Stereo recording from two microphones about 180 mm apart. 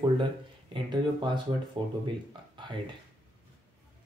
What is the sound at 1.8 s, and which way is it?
Speech, 25° right (ahead or behind).